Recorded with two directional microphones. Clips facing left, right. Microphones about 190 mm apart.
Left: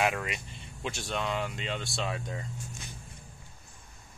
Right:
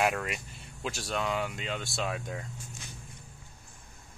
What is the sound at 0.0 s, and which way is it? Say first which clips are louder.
Speech: right 1 dB; centre (ahead or behind).